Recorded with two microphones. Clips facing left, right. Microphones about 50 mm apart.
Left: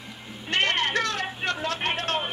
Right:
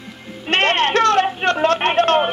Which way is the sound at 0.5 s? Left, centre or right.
Right.